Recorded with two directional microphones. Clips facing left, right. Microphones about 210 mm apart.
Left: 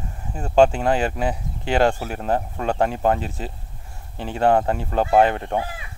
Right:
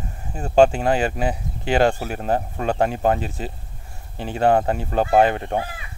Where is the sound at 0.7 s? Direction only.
15° right (ahead or behind).